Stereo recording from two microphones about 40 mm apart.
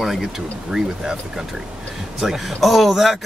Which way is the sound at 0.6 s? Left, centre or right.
Centre.